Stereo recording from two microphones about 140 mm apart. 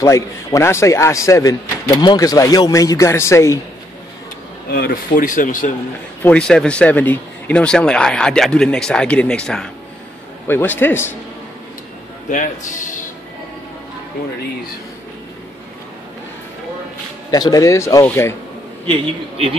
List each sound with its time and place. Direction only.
0.0 s a man's voice: 20° left (ahead or behind)
4.8 s speech: 80° left
6.2 s speech: 5° left (ahead or behind)
12.3 s speech: 65° left (ahead or behind)
17.3 s a man's voice: 25° left (ahead or behind)
18.9 s a man's voice: 45° right (ahead or behind)